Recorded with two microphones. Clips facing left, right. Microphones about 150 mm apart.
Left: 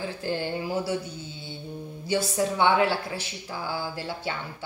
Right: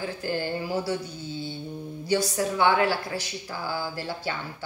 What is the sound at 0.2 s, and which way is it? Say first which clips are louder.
Speech: even; 25° left (ahead or behind).